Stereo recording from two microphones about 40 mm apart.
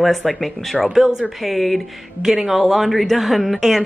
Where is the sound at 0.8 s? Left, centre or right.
Centre.